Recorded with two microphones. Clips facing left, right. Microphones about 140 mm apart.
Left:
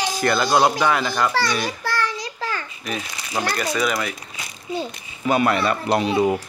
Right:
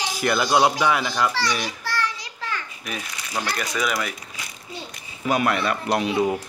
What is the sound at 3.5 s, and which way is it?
Speech, 5° right (ahead or behind).